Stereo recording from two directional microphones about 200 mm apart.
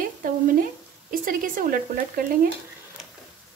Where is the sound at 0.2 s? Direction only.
45° right (ahead or behind).